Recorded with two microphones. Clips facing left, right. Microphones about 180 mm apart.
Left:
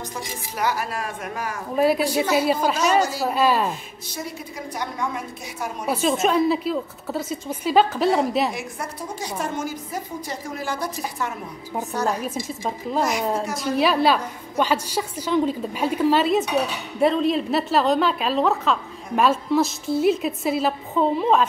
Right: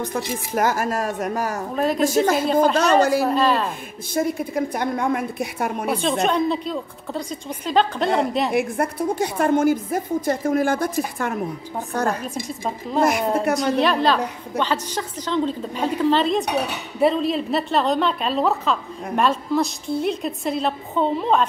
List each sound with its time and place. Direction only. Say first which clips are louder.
0.0 s a woman's voice: right 7 dB; 50° right (ahead or behind)
1.8 s a woman's voice: left 2 dB; 5° left (ahead or behind)
2.0 s a woman's voice: right 4 dB; 45° right (ahead or behind)
2.3 s a woman's voice: right 2 dB; 5° left (ahead or behind)
2.8 s a woman's voice: right 3 dB; 60° right (ahead or behind)
3.3 s a woman's voice: right 1 dB; 10° left (ahead or behind)
4.1 s a woman's voice: right 11 dB; 50° right (ahead or behind)
5.9 s a woman's voice: left 2 dB; 5° left (ahead or behind)
8.5 s a woman's voice: right 8 dB; 55° right (ahead or behind)
11.9 s a woman's voice: right 2 dB; 55° right (ahead or behind)
12.2 s a woman's voice: even; centre (ahead or behind)
13.0 s a woman's voice: right 5 dB; 60° right (ahead or behind)
13.6 s a woman's voice: right 1 dB; 5° left (ahead or behind)